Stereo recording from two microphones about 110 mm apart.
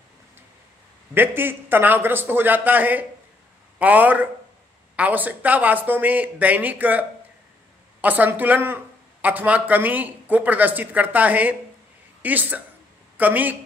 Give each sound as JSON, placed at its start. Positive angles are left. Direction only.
{"t": 1.1, "sound": "a man's voice", "side_deg": -20}